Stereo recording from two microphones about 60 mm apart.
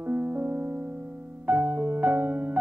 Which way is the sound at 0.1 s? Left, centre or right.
Right.